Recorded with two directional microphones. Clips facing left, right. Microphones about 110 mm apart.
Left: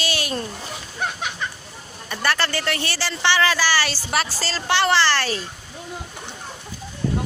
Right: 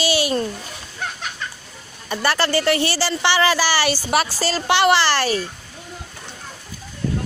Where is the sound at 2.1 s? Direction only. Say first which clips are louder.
Right 4 dB; 10° right (ahead or behind).